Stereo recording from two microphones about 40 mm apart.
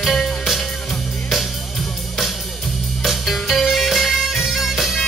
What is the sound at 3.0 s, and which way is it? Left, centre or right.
Music, centre.